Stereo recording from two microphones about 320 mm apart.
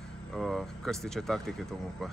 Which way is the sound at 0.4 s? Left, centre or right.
Centre.